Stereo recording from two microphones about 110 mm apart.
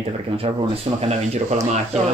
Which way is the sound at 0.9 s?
75° right (ahead or behind).